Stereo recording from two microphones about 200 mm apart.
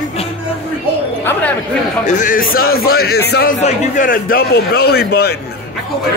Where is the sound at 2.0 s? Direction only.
40° left (ahead or behind).